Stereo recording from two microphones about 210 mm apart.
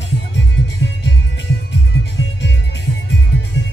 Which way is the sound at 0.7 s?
55° left (ahead or behind).